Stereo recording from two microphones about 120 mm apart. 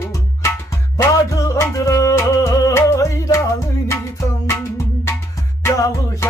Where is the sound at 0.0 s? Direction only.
25° left (ahead or behind).